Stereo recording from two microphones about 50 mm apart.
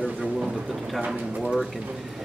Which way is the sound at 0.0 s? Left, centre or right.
Centre.